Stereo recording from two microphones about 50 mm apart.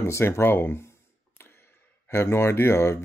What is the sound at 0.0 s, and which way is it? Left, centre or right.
Speech, left.